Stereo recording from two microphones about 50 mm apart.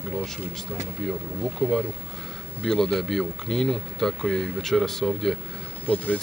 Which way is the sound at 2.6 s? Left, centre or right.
Centre.